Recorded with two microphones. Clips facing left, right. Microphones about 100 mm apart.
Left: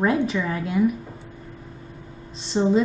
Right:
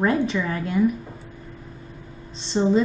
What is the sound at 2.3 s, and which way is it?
Speech, 5° left (ahead or behind).